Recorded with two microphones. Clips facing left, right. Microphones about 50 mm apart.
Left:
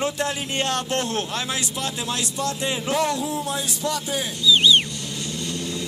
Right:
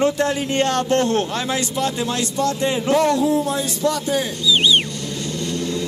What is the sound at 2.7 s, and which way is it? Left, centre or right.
Speech, right.